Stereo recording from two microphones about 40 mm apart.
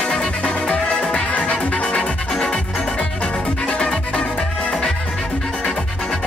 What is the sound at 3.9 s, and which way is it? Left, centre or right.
Music, left.